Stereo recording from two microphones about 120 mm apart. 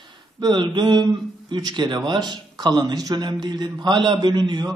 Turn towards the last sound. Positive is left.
turn(degrees=-35)  # may be behind; listen again after turning